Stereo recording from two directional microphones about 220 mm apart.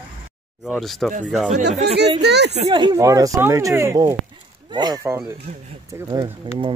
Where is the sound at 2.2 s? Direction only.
50° right (ahead or behind).